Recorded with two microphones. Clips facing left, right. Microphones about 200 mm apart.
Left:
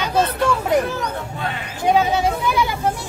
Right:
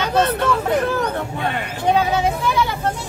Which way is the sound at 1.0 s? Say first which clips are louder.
Right 4 dB; 60° right (ahead or behind).